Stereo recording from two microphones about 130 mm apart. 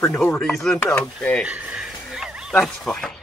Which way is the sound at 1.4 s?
10° right (ahead or behind).